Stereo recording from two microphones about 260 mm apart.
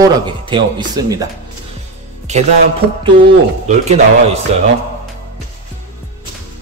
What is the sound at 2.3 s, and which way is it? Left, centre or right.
Speech, right.